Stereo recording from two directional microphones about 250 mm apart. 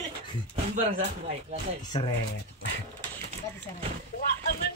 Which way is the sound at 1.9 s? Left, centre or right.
Left.